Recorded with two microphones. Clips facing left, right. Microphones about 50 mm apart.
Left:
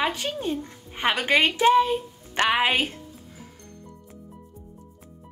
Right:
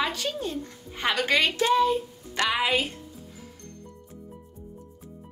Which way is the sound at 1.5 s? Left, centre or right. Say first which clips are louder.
Left 3 dB; left.